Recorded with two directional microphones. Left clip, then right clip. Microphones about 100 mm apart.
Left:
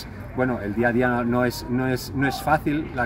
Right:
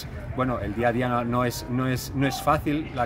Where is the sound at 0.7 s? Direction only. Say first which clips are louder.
Left 3 dB; 20° right (ahead or behind).